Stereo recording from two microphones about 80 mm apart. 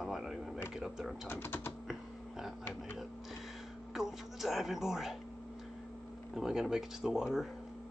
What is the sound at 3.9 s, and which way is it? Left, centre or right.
Speech, centre.